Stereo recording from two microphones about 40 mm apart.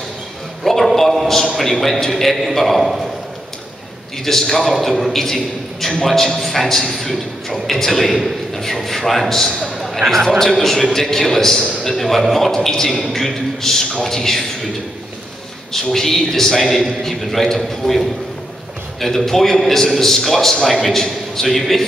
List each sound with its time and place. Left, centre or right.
0.7 s a sound: centre
1.6 s a man's voice: centre
4.2 s a man's voice: centre
9.6 s a sound: centre
10.6 s a man's voice: centre
15.7 s a man's voice: centre